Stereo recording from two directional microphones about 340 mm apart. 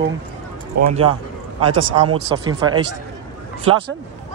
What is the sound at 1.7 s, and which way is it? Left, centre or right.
Speech, right.